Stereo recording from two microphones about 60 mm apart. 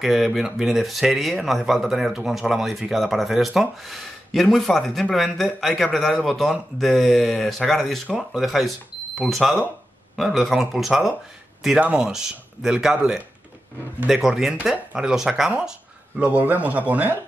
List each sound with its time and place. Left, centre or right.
0.0 s speech: centre
16.2 s a man's voice: right